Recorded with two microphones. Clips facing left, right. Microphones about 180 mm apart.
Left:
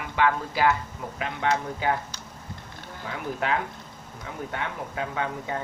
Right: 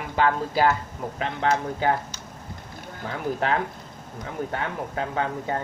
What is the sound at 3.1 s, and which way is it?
Speech, 35° right (ahead or behind).